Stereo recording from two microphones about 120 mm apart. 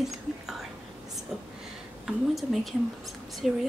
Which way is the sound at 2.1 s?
Centre (ahead or behind).